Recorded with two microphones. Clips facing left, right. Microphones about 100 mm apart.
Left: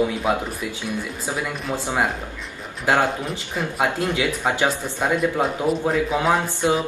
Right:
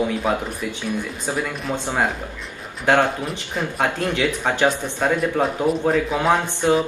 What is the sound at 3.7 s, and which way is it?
Speech, 10° left (ahead or behind).